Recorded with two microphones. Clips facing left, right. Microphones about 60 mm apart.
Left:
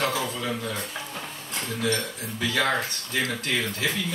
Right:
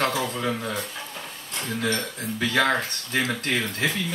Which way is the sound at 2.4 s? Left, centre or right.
Right.